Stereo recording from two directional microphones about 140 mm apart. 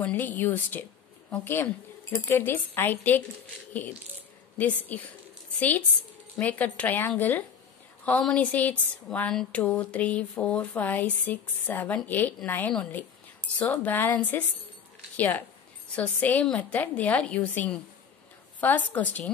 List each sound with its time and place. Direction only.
0.0 s a woman's voice: 15° left (ahead or behind)
4.6 s a woman's voice: 10° left (ahead or behind)